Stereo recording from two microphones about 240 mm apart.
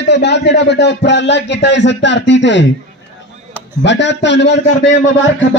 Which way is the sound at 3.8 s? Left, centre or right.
Left.